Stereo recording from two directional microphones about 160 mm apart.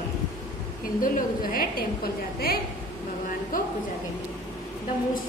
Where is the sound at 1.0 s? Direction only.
60° left (ahead or behind).